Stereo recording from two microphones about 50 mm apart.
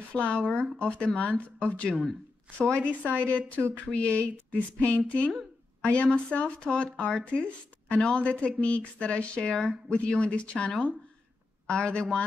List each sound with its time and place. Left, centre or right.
0.1 s speech: left